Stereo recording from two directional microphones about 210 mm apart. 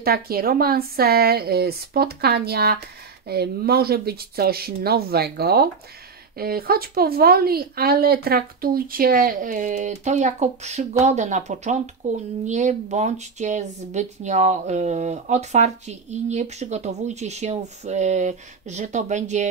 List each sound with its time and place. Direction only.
0.0 s speech: 45° right (ahead or behind)